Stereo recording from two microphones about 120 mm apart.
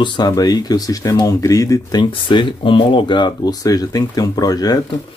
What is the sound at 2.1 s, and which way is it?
Speech, 45° left (ahead or behind).